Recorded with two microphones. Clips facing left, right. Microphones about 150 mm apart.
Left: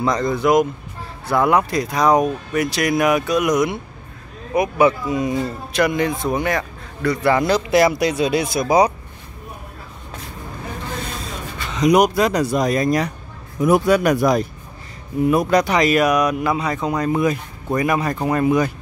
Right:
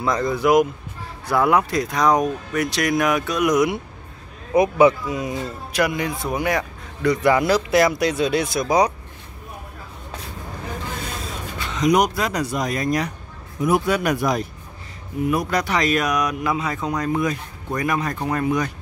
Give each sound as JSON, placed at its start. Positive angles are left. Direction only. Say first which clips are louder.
{"t": 0.0, "sound": "speech", "louder": "left 2 dB", "side_deg": -5}
{"t": 4.6, "sound": "speech", "louder": "right 1 dB", "side_deg": -20}
{"t": 5.2, "sound": "speech", "louder": "left 5 dB", "side_deg": -10}
{"t": 11.7, "sound": "speech", "louder": "left 3 dB", "side_deg": 0}
{"t": 12.2, "sound": "speech", "louder": "left 6 dB", "side_deg": 25}
{"t": 15.2, "sound": "speech", "louder": "left 6 dB", "side_deg": 20}